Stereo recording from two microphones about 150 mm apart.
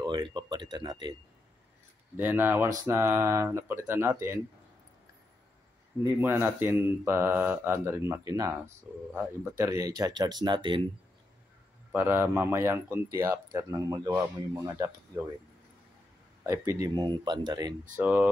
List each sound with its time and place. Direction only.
0.0 s speech: 30° right (ahead or behind)
2.1 s speech: 15° right (ahead or behind)
6.2 s a man's voice: 15° right (ahead or behind); by 10.8 s 30° right (ahead or behind)
11.9 s a man's voice: 15° right (ahead or behind)
16.4 s a man's voice: 20° right (ahead or behind)
17.9 s speech: 10° right (ahead or behind)